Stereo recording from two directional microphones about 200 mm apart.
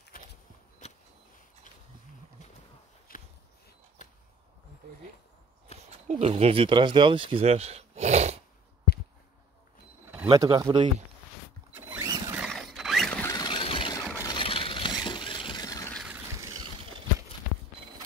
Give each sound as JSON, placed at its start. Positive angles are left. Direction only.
{"t": 3.1, "sound": "a sound", "side_deg": 45}
{"t": 5.9, "sound": "speech", "side_deg": -30}
{"t": 10.2, "sound": "speech", "side_deg": -20}
{"t": 11.7, "sound": "zipper", "side_deg": -10}
{"t": 12.4, "sound": "a sound", "side_deg": 0}
{"t": 13.3, "sound": "squeal", "side_deg": 20}
{"t": 14.1, "sound": "vehicle", "side_deg": 20}
{"t": 15.9, "sound": "vehicle", "side_deg": 0}